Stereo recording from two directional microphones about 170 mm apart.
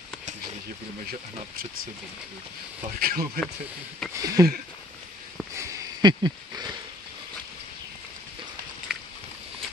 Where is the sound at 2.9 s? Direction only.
60° right (ahead or behind).